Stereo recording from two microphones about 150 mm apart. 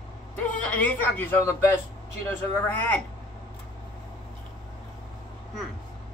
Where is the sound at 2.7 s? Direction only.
10° left (ahead or behind).